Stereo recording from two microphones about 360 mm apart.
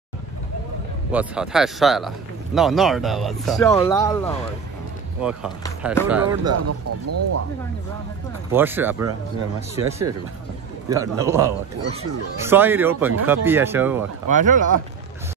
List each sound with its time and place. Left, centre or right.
1.1 s speech: centre
6.0 s speech: centre
6.5 s speech: right
8.5 s a man's voice: centre
14.3 s speech: right